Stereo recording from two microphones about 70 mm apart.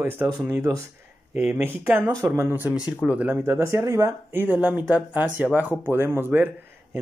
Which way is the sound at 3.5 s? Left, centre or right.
Right.